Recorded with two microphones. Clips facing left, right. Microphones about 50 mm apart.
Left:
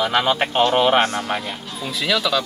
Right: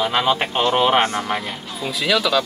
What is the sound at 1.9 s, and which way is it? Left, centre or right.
Speech, centre.